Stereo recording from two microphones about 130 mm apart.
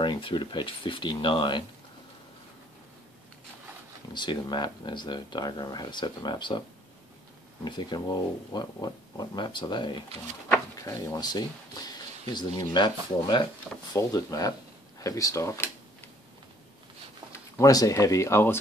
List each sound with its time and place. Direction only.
0.0 s speech: 40° left (ahead or behind)
4.1 s speech: 35° left (ahead or behind)
7.6 s speech: 35° left (ahead or behind)
10.8 s speech: 25° left (ahead or behind)
17.6 s speech: 25° left (ahead or behind)